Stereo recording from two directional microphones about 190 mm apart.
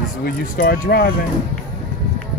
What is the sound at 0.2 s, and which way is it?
Speech, 55° left (ahead or behind).